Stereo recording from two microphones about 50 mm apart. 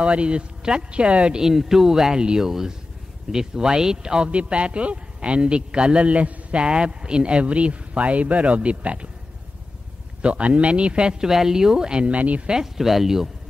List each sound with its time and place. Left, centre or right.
0.0 s speech: right
1.4 s speech: centre; by 9.1 s right
10.2 s speech: right
11.2 s speech: centre; by 12.4 s right
12.4 s speech: centre